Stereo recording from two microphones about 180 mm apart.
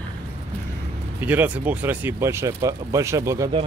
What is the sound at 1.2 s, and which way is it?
Speech, 10° right (ahead or behind).